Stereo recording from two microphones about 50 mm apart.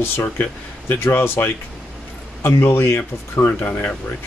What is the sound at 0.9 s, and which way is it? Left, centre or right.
Speech, left.